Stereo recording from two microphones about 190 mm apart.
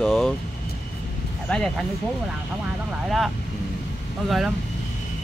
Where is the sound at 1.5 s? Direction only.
5° left (ahead or behind).